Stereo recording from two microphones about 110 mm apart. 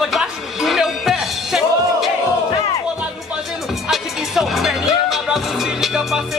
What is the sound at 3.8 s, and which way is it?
Music, 5° right (ahead or behind).